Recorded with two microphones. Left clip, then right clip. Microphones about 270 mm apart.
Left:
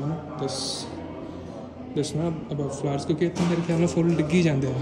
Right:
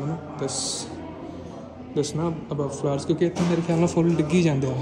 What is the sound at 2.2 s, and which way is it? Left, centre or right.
Speech, centre.